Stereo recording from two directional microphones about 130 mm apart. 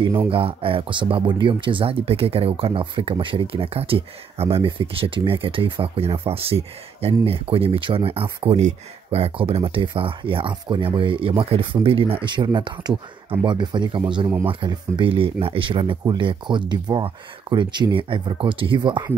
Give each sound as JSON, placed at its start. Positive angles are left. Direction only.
{"t": 0.3, "sound": "speech", "side_deg": -45}